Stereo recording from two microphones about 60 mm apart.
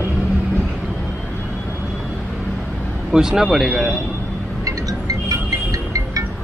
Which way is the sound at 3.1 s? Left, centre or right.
Centre.